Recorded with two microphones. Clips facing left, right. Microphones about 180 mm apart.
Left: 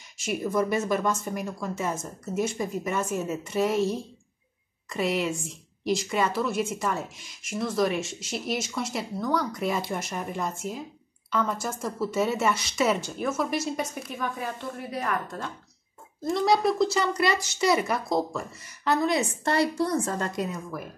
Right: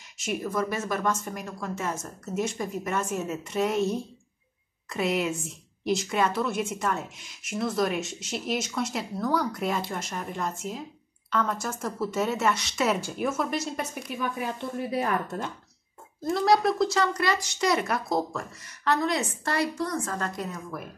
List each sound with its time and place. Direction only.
0.4 s a woman's voice: 15° left (ahead or behind); by 9.7 s 5° right (ahead or behind)
9.7 s a woman's voice: 10° left (ahead or behind)
14.4 s speech: 25° right (ahead or behind)
16.3 s a woman's voice: centre (ahead or behind)
19.4 s speech: 30° left (ahead or behind)
20.5 s a woman's voice: centre (ahead or behind)